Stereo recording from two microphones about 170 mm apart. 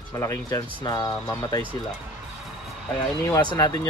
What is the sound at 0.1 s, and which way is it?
Speech, 20° left (ahead or behind).